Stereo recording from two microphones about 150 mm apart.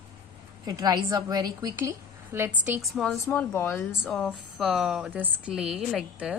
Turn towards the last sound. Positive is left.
turn(degrees=-5)  # may be behind; listen again after turning